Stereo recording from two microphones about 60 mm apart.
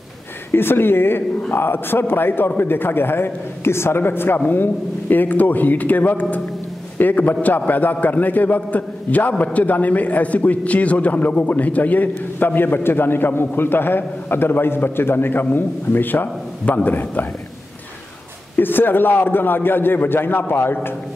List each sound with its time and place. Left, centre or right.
0.5 s a man's voice: left
18.6 s a man's voice: left